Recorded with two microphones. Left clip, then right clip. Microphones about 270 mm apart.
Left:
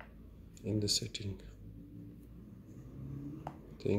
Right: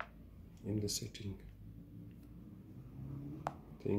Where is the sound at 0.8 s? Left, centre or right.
Centre.